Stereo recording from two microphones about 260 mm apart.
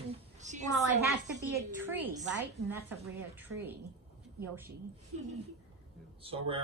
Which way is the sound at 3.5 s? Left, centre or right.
Centre.